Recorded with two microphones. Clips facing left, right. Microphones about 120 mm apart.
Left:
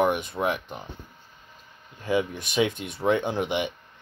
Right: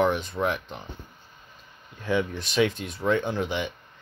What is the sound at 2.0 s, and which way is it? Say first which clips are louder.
Speech: left 1 dB; 5° left (ahead or behind).